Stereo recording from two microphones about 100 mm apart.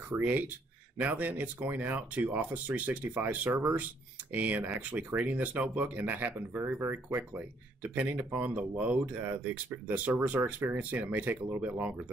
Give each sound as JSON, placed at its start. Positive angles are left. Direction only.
{"t": 0.1, "sound": "speech", "side_deg": -20}